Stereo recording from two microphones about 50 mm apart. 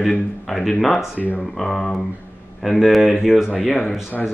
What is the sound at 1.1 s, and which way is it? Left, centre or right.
Speech, left.